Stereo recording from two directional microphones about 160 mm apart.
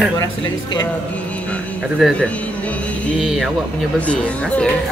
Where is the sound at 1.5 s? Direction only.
5° left (ahead or behind).